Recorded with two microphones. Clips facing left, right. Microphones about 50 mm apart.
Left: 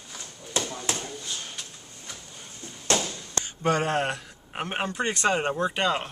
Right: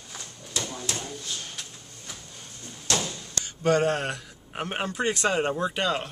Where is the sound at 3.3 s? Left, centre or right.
Left.